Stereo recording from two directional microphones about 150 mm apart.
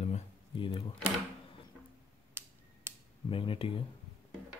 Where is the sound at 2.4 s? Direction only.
15° right (ahead or behind).